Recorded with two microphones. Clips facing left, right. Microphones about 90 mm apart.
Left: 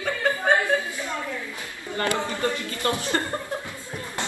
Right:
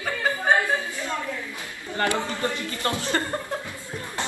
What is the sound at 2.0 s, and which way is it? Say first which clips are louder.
Speech: left 1 dB; 25° right (ahead or behind).